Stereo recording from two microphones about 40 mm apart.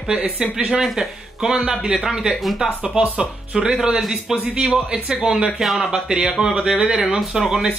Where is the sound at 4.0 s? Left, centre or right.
Centre.